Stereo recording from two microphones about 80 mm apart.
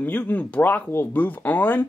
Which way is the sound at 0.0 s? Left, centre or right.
Left.